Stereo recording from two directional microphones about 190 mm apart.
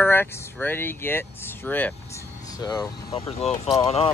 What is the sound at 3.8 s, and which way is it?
Speech, 30° left (ahead or behind).